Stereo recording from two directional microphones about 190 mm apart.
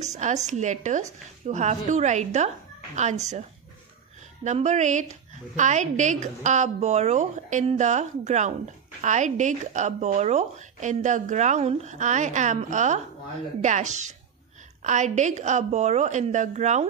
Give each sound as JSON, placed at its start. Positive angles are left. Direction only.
{"t": 0.0, "sound": "speech", "side_deg": -35}
{"t": 4.5, "sound": "speech", "side_deg": -40}